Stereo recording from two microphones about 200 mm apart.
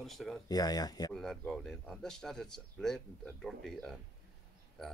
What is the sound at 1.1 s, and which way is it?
Speech, centre (ahead or behind).